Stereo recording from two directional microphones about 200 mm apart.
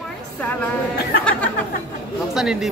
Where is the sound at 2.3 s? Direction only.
Centre (ahead or behind).